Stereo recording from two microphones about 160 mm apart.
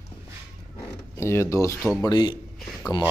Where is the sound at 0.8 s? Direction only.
15° left (ahead or behind).